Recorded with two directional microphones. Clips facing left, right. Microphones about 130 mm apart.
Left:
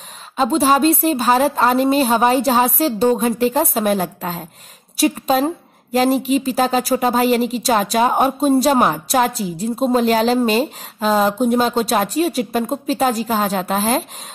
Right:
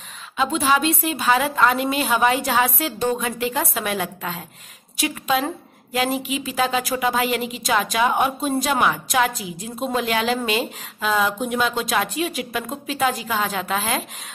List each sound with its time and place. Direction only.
0.4 s speech: 40° left (ahead or behind)